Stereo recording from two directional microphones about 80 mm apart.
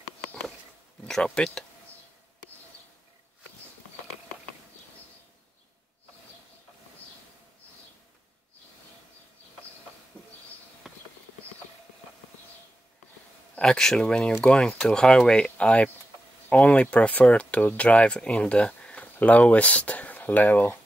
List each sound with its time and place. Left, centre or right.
1.0 s speech: centre
10.8 s clip-clop: centre
13.6 s speech: centre